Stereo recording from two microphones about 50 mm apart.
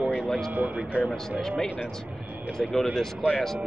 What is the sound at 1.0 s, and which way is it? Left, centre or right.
Speech, right.